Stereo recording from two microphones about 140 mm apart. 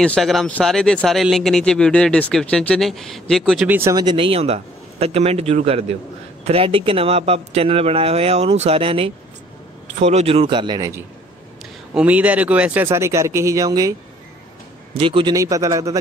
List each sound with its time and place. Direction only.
0.0 s speech: 5° left (ahead or behind)
3.6 s speech: 15° right (ahead or behind)
3.9 s speech: 35° right (ahead or behind)
9.9 s speech: 50° right (ahead or behind); by 10.8 s 35° right (ahead or behind)
10.8 s a man's voice: 20° right (ahead or behind)
15.0 s a man's voice: 40° right (ahead or behind)
15.3 s a man's voice: 25° right (ahead or behind)